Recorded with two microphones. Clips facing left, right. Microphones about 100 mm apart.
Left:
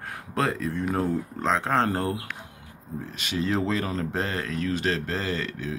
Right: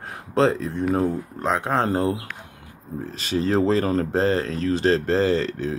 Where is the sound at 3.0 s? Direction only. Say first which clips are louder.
Right 5 dB; 35° right (ahead or behind).